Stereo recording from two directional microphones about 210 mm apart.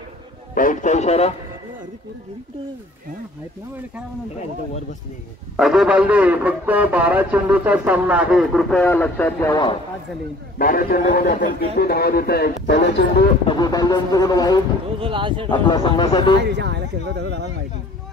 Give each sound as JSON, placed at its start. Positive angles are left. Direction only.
{"t": 0.6, "sound": "speech", "side_deg": 40}
{"t": 5.6, "sound": "a man's voice", "side_deg": 0}
{"t": 10.6, "sound": "a man's voice", "side_deg": 40}
{"t": 13.5, "sound": "speech", "side_deg": 20}
{"t": 15.0, "sound": "speech", "side_deg": -25}
{"t": 15.5, "sound": "speech", "side_deg": 20}
{"t": 16.4, "sound": "speech", "side_deg": -55}